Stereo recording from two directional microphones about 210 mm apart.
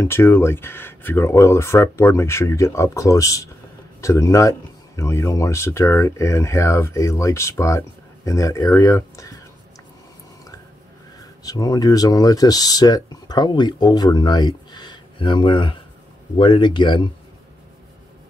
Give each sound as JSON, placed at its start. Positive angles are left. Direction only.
{"t": 0.0, "sound": "speech", "side_deg": 10}
{"t": 11.4, "sound": "speech", "side_deg": 15}